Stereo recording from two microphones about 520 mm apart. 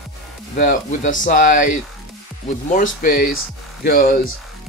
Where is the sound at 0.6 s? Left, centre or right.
Centre.